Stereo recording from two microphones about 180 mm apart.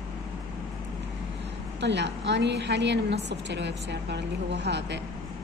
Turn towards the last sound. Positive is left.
turn(degrees=-70)  # may be behind; listen again after turning